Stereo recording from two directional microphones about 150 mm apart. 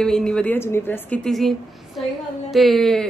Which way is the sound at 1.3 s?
Centre (ahead or behind).